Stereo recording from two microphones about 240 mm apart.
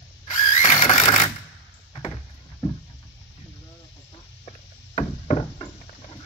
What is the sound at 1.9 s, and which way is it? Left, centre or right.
Door, left.